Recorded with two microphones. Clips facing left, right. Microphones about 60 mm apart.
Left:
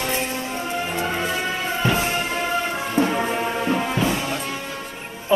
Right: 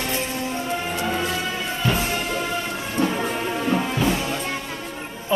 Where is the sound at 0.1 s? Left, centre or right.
Left.